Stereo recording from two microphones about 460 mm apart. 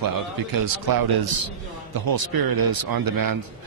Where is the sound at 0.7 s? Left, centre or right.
Right.